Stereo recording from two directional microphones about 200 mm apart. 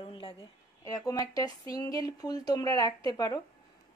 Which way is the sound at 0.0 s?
25° left (ahead or behind).